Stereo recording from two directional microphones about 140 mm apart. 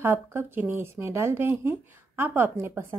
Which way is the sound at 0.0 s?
15° right (ahead or behind).